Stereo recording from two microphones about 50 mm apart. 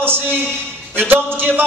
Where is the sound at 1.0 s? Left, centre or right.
Right.